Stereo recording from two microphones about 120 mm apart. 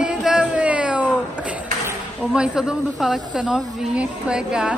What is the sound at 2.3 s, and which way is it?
Speech, 5° right (ahead or behind).